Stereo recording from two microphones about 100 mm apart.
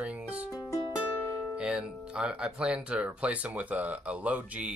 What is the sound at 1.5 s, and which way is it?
Speech, 10° right (ahead or behind).